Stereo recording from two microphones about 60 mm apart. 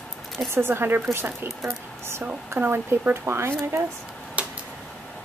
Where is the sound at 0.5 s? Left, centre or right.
Right.